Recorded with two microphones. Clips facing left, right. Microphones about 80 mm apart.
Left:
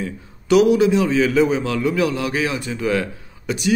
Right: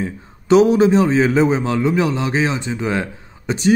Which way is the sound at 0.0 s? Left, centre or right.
Right.